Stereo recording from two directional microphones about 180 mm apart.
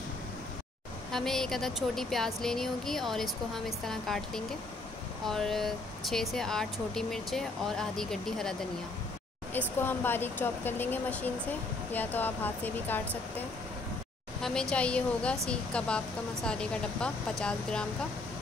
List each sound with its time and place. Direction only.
1.1 s speech: centre (ahead or behind)
14.4 s speech: 5° left (ahead or behind)